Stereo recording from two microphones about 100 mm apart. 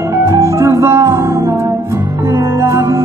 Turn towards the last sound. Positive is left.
turn(degrees=-30)  # may be behind; listen again after turning